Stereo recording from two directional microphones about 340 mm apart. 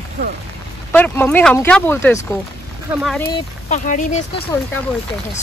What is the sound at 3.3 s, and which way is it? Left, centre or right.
Speech, left.